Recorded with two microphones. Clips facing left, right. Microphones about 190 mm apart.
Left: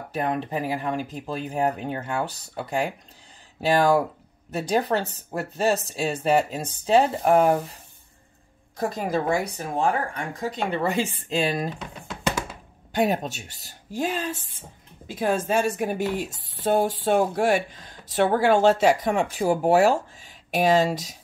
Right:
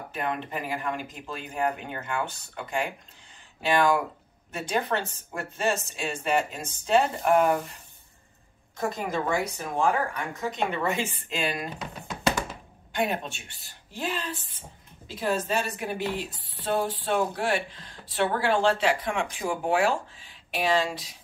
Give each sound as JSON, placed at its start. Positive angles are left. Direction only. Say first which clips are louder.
{"t": 0.1, "sound": "speech", "louder": "left 5 dB", "side_deg": 40}
{"t": 12.9, "sound": "speech", "louder": "left 5 dB", "side_deg": 40}